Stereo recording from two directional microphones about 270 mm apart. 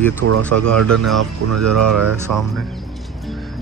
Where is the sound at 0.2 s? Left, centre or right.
Right.